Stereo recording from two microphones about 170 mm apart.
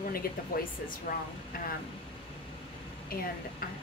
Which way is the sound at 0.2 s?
60° left (ahead or behind).